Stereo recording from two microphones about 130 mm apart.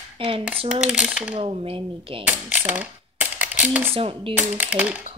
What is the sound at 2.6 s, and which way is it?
Coin, 15° right (ahead or behind).